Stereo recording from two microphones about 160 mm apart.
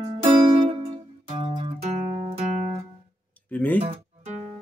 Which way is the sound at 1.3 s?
35° right (ahead or behind).